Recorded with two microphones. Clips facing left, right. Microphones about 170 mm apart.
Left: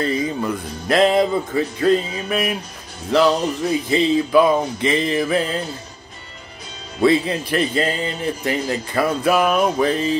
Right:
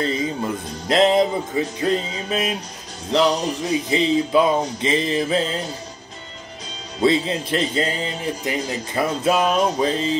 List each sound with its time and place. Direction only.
0.0 s a man's voice: 20° right (ahead or behind)
7.0 s a man's voice: 25° right (ahead or behind)